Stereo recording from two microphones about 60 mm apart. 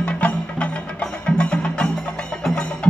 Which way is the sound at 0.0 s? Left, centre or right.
Left.